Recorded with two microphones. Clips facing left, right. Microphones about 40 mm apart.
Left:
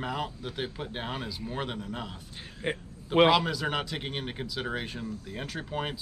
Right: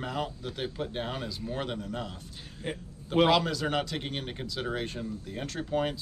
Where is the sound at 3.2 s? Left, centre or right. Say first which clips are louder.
Left 1 dB; centre.